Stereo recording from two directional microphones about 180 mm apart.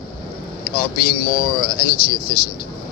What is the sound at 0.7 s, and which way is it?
Speech, 55° left (ahead or behind).